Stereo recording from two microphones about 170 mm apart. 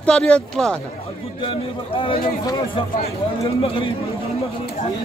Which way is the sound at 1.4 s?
30° left (ahead or behind).